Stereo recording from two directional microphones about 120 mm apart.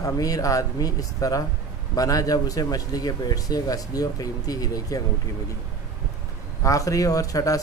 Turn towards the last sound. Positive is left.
turn(degrees=30)  # may be behind; listen again after turning